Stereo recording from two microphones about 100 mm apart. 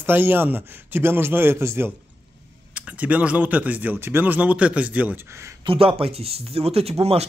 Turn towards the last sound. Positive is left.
turn(degrees=-90)